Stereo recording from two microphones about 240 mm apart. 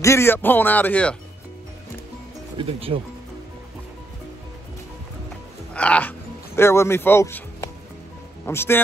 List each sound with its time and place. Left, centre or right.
0.0 s speech: centre
2.5 s speech: right
5.7 s music: centre
8.5 s speech: centre